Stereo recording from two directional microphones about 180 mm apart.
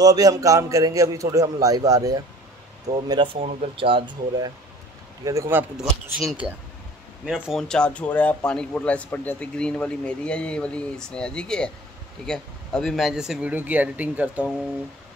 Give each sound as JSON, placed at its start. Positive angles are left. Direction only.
{"t": 0.0, "sound": "a man's voice", "side_deg": -20}